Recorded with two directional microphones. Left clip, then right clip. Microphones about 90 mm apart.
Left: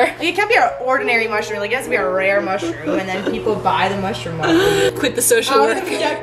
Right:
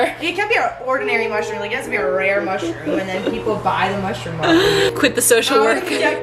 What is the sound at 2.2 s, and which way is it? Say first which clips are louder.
Speech: left 1 dB; 25° left (ahead or behind).